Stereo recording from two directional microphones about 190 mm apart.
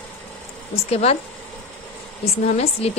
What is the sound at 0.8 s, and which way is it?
Speech, 35° left (ahead or behind).